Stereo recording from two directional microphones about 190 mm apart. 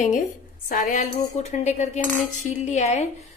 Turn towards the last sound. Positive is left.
turn(degrees=35)  # may be behind; listen again after turning